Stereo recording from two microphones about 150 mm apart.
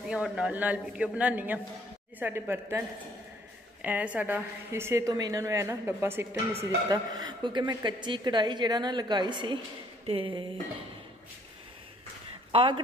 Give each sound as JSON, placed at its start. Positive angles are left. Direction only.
{"t": 0.1, "sound": "a woman's voice", "side_deg": -5}
{"t": 3.8, "sound": "a woman's voice", "side_deg": -10}
{"t": 12.5, "sound": "speech", "side_deg": -35}